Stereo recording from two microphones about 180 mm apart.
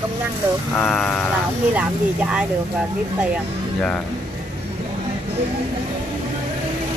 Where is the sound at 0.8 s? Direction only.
10° left (ahead or behind).